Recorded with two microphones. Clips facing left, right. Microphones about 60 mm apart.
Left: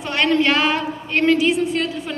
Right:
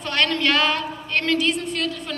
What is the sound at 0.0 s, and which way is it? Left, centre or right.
A woman's voice, centre.